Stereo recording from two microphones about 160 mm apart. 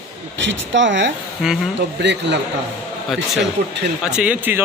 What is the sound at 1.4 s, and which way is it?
Speech, centre (ahead or behind).